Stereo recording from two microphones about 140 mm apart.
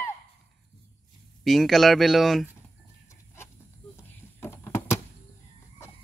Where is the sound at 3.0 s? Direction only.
15° left (ahead or behind).